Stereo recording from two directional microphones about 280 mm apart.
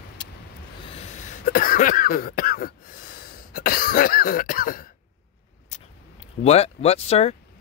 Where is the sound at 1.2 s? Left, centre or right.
Left.